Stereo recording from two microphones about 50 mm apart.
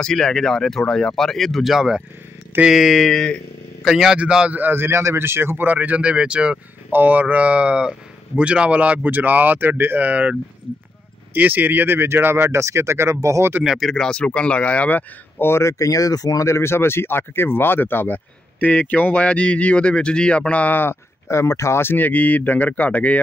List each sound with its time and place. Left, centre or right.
0.0 s speech: centre
2.7 s a sound: centre
3.8 s a man's voice: centre
4.5 s speech: right
5.7 s speech: right
6.9 s speech: right
9.9 s speech: right
11.3 s speech: right
13.7 s a sound: centre
14.0 s speech: centre
15.4 s speech: left
20.7 s speech: left
21.3 s speech: left
21.8 s speech: left